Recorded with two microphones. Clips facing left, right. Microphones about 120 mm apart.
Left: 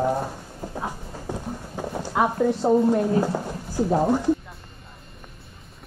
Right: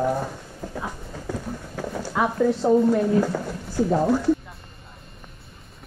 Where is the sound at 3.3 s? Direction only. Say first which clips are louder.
Even; 15° left (ahead or behind).